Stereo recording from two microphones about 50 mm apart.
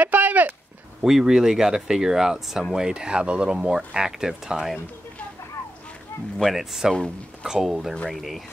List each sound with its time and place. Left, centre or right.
0.0 s a sound: right
1.0 s speech: centre
6.4 s speech: centre